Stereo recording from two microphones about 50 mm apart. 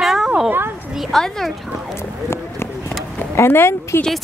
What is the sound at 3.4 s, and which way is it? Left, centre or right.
Speech, left.